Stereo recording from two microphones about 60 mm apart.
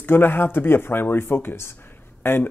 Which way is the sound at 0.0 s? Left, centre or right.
Left.